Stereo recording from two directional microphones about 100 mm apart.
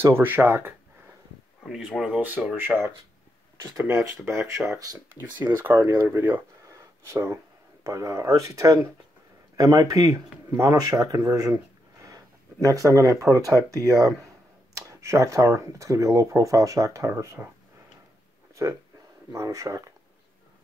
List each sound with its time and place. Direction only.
0.0 s speech: 20° right (ahead or behind)
1.7 s speech: centre (ahead or behind)
2.2 s speech: 15° right (ahead or behind)
3.9 s speech: 30° right (ahead or behind)
5.4 s speech: 20° right (ahead or behind)
6.7 s a sound: 30° right (ahead or behind)
7.8 s speech: 30° right (ahead or behind)
18.5 s a sound: 30° right (ahead or behind)
19.3 s speech: 35° right (ahead or behind)